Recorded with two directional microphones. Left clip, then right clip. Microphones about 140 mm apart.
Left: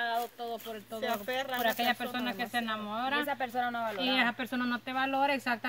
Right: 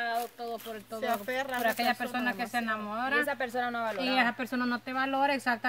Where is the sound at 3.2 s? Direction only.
40° right (ahead or behind).